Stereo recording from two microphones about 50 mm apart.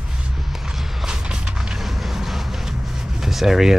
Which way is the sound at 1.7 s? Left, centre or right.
Centre.